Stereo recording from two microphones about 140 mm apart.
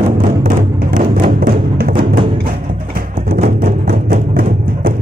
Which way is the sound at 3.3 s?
45° right (ahead or behind).